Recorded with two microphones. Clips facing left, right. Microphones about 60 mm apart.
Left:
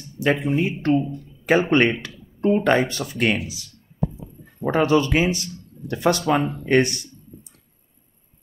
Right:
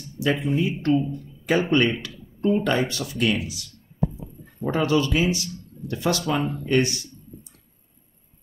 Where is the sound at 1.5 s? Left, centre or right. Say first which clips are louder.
Left 3 dB; left.